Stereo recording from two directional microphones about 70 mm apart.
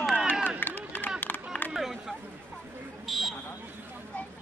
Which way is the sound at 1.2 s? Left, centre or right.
Left.